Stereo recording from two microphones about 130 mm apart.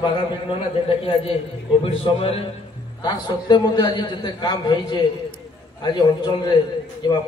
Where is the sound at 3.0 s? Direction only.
35° left (ahead or behind).